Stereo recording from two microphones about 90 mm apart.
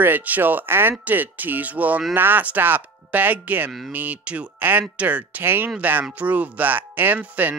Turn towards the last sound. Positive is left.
turn(degrees=-20)  # may be behind; listen again after turning